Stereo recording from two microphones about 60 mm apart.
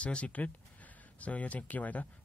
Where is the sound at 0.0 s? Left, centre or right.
Centre.